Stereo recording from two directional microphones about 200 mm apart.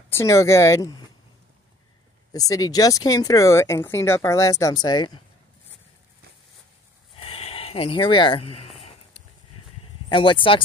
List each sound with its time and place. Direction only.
0.1 s speech: 15° left (ahead or behind)
2.3 s speech: 15° left (ahead or behind)
7.2 s a sound: 30° left (ahead or behind)
10.0 s speech: 25° left (ahead or behind)